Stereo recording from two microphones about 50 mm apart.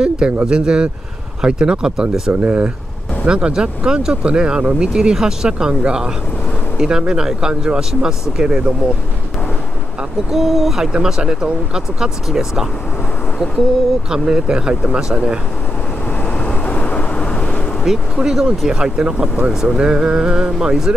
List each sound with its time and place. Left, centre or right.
0.0 s speech: centre
2.4 s speech: right
10.3 s speech: centre
14.1 s speech: centre
16.4 s vehicle: left
17.8 s speech: centre